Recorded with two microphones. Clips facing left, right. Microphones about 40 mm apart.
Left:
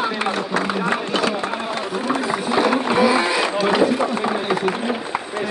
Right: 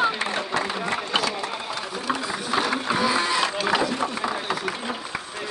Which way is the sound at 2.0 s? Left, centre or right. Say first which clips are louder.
Left 5 dB; left.